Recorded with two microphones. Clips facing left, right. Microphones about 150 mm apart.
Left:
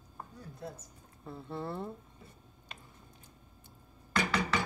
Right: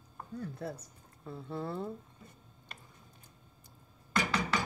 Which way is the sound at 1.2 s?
Centre (ahead or behind).